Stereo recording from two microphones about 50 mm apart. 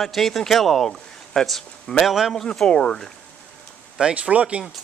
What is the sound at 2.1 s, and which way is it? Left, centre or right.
Speech, centre.